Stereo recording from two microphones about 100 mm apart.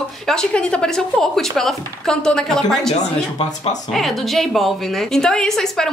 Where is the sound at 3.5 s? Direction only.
40° left (ahead or behind).